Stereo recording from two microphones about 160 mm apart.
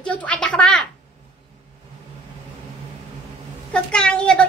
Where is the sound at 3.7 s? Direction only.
5° left (ahead or behind).